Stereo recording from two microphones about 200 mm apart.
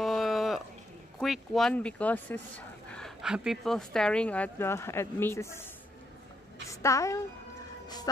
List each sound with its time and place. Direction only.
0.0 s a sound: centre (ahead or behind)
1.2 s speech: centre (ahead or behind)
6.7 s a woman's voice: 15° left (ahead or behind)